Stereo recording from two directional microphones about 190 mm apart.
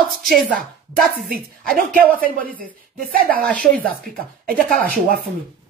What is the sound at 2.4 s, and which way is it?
A woman's voice, 50° right (ahead or behind).